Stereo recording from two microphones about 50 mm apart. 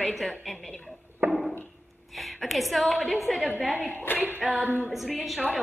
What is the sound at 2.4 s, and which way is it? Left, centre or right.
A woman's voice, centre.